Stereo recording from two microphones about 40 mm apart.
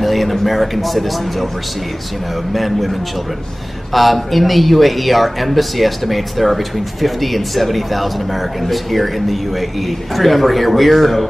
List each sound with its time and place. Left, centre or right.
0.0 s a man's voice: centre
2.5 s speech: centre